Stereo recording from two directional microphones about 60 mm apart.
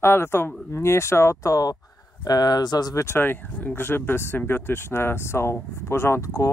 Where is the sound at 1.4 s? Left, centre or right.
Left.